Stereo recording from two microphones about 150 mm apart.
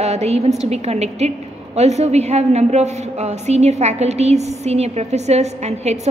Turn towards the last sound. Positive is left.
turn(degrees=-45)  # may be behind; listen again after turning